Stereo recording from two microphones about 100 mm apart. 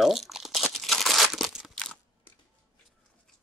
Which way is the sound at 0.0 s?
Centre (ahead or behind).